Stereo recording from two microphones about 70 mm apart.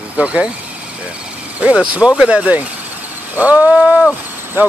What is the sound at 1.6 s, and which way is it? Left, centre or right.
Speech, centre.